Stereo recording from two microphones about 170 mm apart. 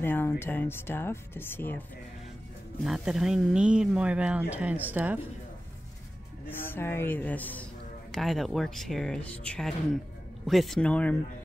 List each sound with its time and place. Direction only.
0.0 s speech: 15° left (ahead or behind)
2.8 s speech: centre (ahead or behind)
6.6 s speech: 15° left (ahead or behind)